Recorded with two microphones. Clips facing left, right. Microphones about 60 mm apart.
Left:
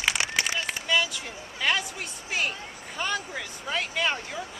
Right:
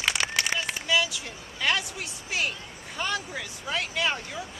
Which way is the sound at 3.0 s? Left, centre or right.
Centre.